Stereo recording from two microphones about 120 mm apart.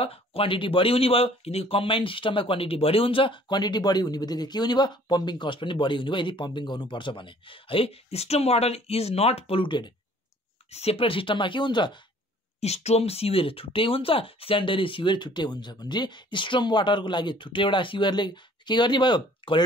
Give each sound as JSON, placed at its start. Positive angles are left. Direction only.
{"t": 0.0, "sound": "speech", "side_deg": 55}
{"t": 10.7, "sound": "speech", "side_deg": 60}
{"t": 12.5, "sound": "speech", "side_deg": 65}